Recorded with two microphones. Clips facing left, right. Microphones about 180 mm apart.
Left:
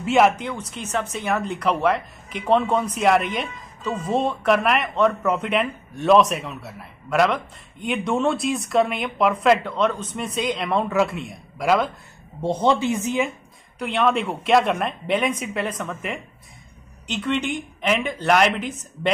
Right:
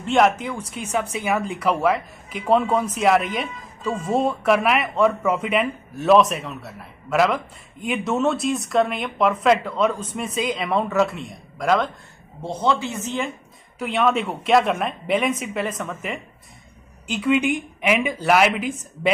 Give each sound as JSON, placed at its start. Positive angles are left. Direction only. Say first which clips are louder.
{"t": 0.0, "sound": "speech", "louder": "left 1 dB", "side_deg": 5}
{"t": 12.4, "sound": "speech", "louder": "left 3 dB", "side_deg": 15}
{"t": 13.7, "sound": "speech", "louder": "even", "side_deg": 0}